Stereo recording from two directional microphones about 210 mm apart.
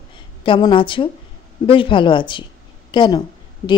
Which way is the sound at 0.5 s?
20° left (ahead or behind).